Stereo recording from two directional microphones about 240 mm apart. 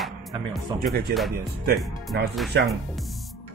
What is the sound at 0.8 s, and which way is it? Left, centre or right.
Speech, right.